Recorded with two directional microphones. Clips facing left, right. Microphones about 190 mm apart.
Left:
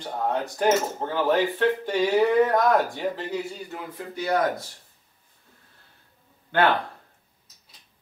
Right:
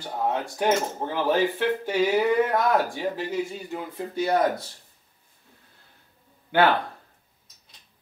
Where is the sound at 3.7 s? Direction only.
25° right (ahead or behind).